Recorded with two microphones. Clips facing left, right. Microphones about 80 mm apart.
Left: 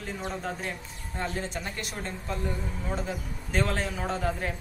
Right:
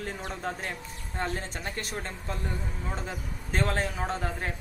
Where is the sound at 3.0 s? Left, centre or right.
Right.